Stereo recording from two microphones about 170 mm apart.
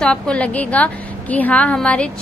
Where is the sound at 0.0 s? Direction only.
5° left (ahead or behind).